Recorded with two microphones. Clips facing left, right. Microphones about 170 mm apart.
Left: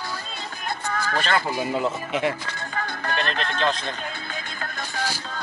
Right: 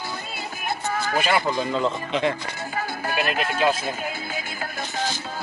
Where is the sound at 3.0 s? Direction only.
10° right (ahead or behind).